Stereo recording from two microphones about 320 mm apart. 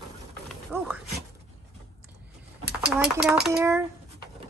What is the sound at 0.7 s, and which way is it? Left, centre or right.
Speech, centre.